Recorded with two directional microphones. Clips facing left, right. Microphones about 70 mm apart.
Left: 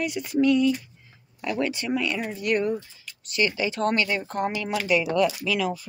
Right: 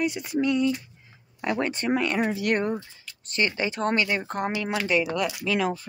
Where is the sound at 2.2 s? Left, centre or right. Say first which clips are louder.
Right 5 dB; right.